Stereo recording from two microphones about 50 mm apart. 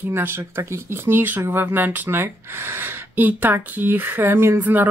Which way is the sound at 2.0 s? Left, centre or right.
Right.